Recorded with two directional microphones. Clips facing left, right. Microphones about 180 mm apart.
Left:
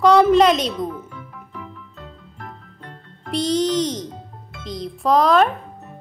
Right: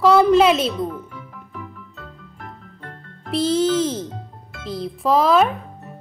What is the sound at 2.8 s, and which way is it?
A child's voice, 5° right (ahead or behind).